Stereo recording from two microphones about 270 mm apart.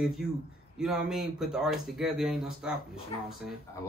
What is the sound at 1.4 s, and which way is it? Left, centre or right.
A man's voice, centre.